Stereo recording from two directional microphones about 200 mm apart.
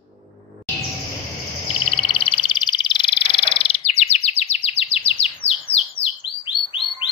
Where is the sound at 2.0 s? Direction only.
25° left (ahead or behind).